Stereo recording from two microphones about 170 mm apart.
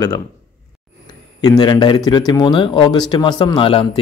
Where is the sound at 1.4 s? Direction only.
25° left (ahead or behind).